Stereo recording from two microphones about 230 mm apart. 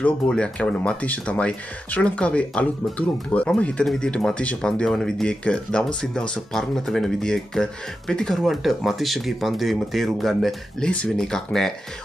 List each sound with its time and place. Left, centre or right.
0.0 s speech: centre